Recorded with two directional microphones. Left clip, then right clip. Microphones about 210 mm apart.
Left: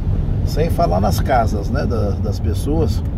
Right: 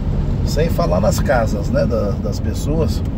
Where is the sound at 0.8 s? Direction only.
10° left (ahead or behind).